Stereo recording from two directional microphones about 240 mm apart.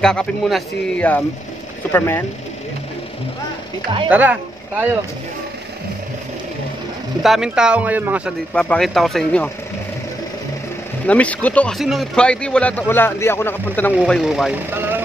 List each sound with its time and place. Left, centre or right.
0.0 s speech: centre
4.1 s speech: centre
7.2 s speech: centre
11.1 s speech: centre